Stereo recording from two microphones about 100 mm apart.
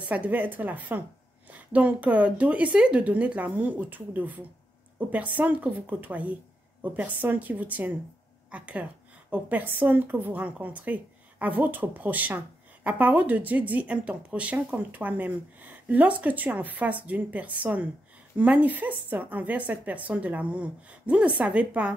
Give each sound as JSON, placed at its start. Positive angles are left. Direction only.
{"t": 0.1, "sound": "speech", "side_deg": -15}